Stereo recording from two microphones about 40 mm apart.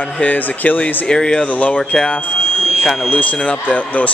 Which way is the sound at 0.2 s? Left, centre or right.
Left.